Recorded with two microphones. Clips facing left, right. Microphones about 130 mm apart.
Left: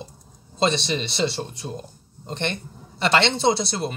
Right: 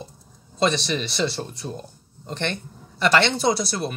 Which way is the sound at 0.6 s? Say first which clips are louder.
Even; 25° left (ahead or behind).